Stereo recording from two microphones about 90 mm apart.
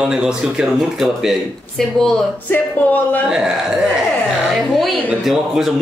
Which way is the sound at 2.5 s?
20° left (ahead or behind).